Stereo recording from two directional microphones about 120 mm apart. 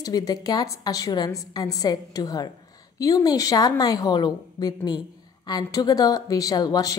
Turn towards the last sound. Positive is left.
turn(degrees=30)  # may be behind; listen again after turning